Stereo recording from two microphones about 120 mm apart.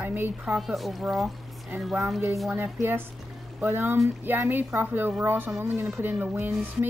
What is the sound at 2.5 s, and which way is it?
Speech, 15° right (ahead or behind).